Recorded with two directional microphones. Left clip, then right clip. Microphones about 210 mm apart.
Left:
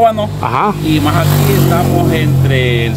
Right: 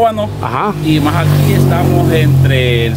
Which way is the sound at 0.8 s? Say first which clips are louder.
Even; 10° right (ahead or behind).